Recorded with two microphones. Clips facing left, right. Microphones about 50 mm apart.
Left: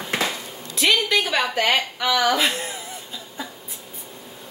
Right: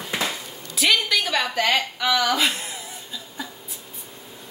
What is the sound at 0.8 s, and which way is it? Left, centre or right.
A woman's voice, centre.